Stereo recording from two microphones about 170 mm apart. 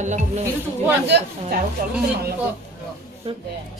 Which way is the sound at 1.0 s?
80° right.